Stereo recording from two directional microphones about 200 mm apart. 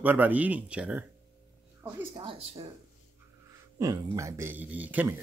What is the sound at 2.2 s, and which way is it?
Speech, 30° right (ahead or behind).